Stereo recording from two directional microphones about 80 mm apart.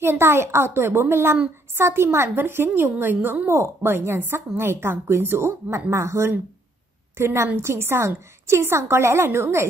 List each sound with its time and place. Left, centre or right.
0.0 s a woman's voice: right